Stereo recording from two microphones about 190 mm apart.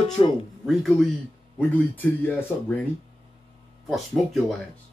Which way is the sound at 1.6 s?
10° left (ahead or behind).